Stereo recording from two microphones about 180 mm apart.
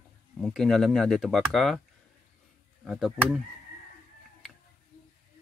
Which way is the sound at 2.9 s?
Centre (ahead or behind).